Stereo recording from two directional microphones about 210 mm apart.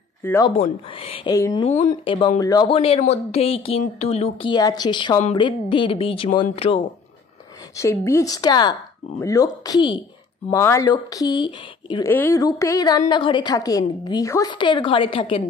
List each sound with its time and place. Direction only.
0.2 s speech: 10° left (ahead or behind)
0.6 s speech: 25° left (ahead or behind)
1.3 s speech: 15° left (ahead or behind)
1.6 s speech: 35° left (ahead or behind)
7.7 s speech: 15° left (ahead or behind)
12.1 s speech: 10° left (ahead or behind)